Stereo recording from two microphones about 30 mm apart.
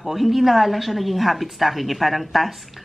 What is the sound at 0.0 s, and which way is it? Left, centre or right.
Speech, centre.